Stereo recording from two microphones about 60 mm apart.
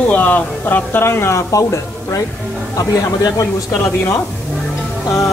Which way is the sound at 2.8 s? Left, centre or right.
Left.